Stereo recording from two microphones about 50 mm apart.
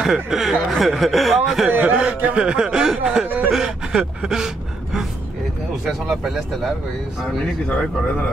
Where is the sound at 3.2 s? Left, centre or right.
Right.